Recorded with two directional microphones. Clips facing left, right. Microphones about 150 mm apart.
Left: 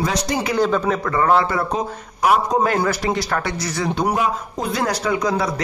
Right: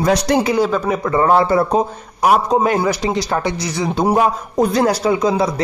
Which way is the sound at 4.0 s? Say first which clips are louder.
Right 7 dB; 40° right (ahead or behind).